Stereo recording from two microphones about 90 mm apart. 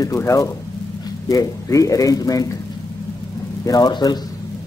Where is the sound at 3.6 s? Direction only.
50° left (ahead or behind).